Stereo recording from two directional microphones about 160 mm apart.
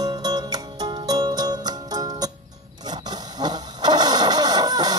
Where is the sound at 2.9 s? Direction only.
25° right (ahead or behind).